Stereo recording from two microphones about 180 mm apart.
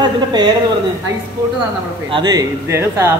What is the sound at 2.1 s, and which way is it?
Speech, 25° right (ahead or behind).